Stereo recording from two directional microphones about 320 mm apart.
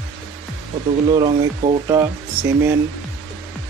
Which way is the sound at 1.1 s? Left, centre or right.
Centre.